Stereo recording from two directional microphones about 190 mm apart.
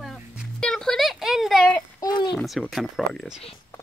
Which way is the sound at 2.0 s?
20° left (ahead or behind).